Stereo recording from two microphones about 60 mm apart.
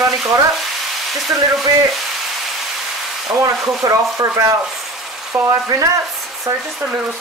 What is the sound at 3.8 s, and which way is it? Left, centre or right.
Speech, right.